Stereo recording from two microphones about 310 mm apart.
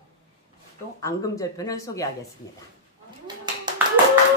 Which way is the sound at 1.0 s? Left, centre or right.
Centre.